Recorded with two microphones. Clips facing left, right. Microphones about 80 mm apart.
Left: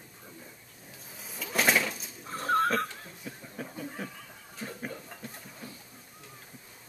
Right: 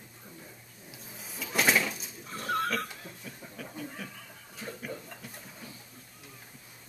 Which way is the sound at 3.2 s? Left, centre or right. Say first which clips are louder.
Left 5 dB; left.